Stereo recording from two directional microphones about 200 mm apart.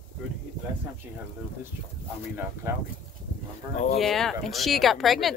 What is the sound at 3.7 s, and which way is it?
Speech, 35° left (ahead or behind).